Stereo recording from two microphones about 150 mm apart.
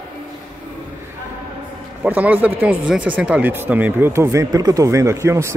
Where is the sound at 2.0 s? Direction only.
10° right (ahead or behind).